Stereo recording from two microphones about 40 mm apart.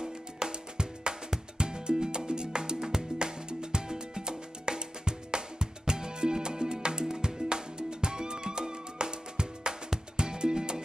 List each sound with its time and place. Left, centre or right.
0.0 s music: centre